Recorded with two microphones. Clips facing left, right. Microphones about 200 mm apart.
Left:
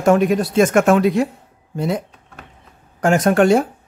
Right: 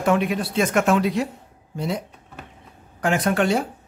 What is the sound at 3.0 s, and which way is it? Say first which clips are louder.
Speech: left 6 dB; 45° left (ahead or behind).